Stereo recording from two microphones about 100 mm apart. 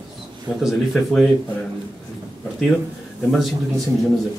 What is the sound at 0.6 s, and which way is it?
Speech, centre (ahead or behind).